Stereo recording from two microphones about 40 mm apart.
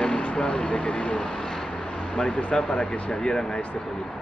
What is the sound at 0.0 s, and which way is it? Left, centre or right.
Speech, left.